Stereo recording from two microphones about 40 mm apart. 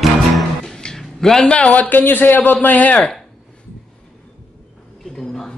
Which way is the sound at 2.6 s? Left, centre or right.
Left.